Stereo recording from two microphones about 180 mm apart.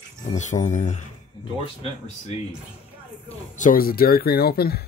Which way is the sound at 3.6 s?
50° left (ahead or behind).